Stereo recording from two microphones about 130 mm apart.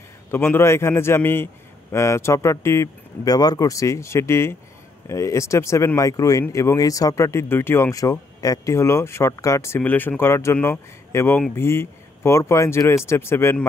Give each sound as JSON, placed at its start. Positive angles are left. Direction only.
{"t": 0.3, "sound": "speech", "side_deg": 20}